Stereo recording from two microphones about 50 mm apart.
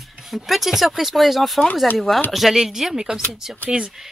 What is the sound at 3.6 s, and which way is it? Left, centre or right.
Speech, right.